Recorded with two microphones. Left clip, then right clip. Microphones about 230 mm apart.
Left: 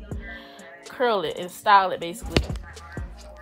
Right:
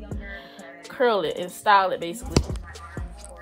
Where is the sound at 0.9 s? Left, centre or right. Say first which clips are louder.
Right 2 dB; left.